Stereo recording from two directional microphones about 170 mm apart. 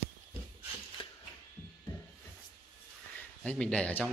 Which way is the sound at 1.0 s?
35° left (ahead or behind).